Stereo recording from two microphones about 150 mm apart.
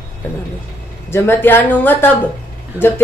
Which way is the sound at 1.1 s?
15° left (ahead or behind).